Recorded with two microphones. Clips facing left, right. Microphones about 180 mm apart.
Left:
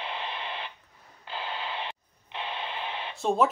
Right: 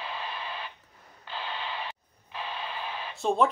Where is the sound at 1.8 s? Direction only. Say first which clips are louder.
Left 1 dB; 25° left (ahead or behind).